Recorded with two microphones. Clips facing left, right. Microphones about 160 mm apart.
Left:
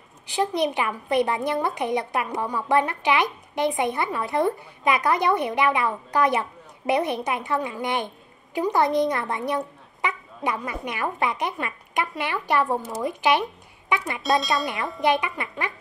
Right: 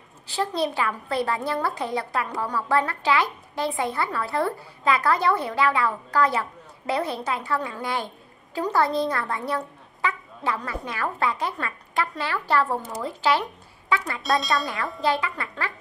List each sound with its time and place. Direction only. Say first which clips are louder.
0.3 s a woman's voice: left 2 dB; 15° left (ahead or behind)